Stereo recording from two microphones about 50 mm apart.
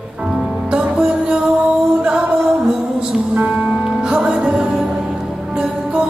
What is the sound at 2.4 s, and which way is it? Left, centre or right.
Music, centre.